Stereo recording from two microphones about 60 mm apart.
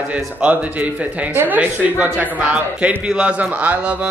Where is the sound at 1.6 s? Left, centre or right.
Right.